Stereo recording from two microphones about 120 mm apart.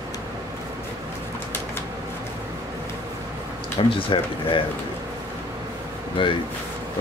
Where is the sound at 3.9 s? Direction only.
45° left (ahead or behind).